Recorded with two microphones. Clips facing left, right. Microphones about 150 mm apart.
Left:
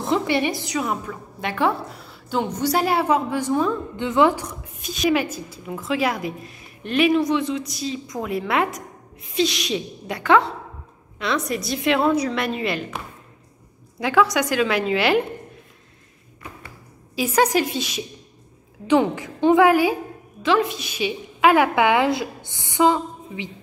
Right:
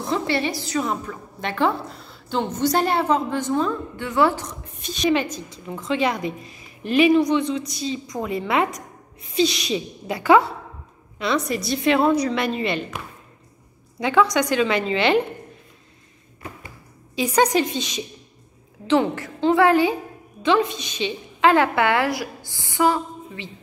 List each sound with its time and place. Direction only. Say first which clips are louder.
0.0 s a woman's voice: left 2 dB; 15° left (ahead or behind)
0.7 s a woman's voice: right 1 dB; 5° left (ahead or behind)
4.7 s a woman's voice: even; centre (ahead or behind)
13.9 s a woman's voice: even; centre (ahead or behind)
17.1 s a woman's voice: even; 5° left (ahead or behind)
18.9 s a woman's voice: left 1 dB; 15° left (ahead or behind)